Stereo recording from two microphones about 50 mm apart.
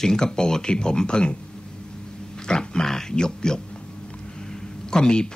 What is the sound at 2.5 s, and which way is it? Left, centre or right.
Speech, centre.